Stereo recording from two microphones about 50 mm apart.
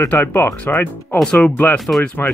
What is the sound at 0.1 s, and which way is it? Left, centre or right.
Speech, left.